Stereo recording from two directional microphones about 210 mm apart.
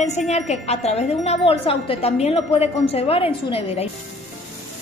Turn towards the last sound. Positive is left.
turn(degrees=25)  # may be behind; listen again after turning